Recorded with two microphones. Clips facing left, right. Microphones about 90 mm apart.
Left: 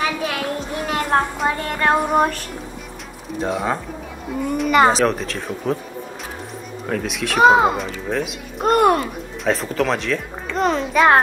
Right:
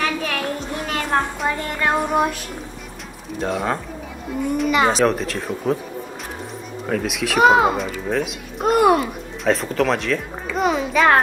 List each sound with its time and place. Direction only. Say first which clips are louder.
0.0 s a sound: left 1 dB; 15° left (ahead or behind)
1.4 s a child's voice: left 2 dB; centre (ahead or behind)
3.3 s a child's voice: left 1 dB; centre (ahead or behind)
4.6 s speech: left 4 dB; 45° left (ahead or behind)
4.9 s a child's voice: right 1 dB; centre (ahead or behind)
6.9 s a child's voice: right 1 dB; centre (ahead or behind)